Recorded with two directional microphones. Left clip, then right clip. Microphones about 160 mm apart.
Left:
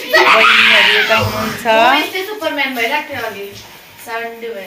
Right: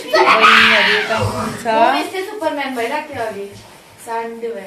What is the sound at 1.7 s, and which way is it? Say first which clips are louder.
Speech: left 3 dB; 15° left (ahead or behind).